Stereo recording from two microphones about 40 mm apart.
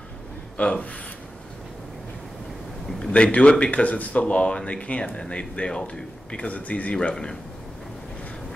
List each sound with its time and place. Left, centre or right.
0.6 s a man's voice: left
3.1 s speech: left
6.3 s speech: left
7.0 s a man's voice: left